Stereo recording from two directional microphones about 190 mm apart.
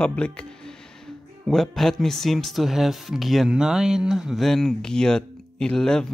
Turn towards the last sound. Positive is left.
turn(degrees=5)  # may be behind; listen again after turning